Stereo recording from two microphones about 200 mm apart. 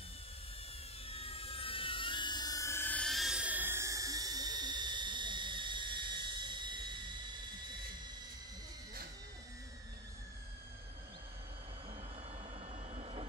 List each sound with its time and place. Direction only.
1.0 s helicopter: 30° left (ahead or behind); by 7.3 s 25° right (ahead or behind)
12.9 s train: 30° right (ahead or behind)